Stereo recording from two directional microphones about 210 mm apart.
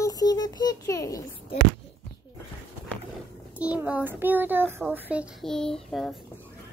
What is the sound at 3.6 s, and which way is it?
A child's voice, 5° right (ahead or behind).